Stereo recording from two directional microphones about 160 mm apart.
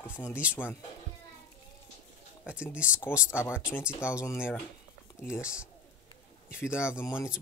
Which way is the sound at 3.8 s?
5° right (ahead or behind).